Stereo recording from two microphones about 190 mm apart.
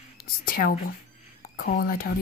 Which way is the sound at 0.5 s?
50° left (ahead or behind).